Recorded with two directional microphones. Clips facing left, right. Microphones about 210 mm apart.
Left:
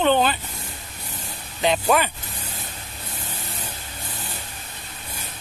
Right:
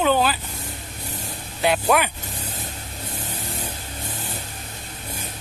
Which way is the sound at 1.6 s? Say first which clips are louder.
Even; 5° right (ahead or behind).